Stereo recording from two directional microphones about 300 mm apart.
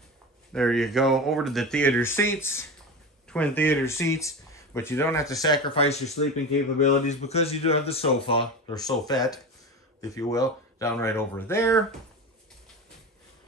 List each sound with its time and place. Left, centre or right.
0.5 s speech: centre